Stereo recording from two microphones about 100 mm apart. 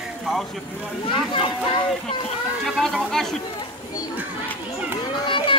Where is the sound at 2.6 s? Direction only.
5° left (ahead or behind).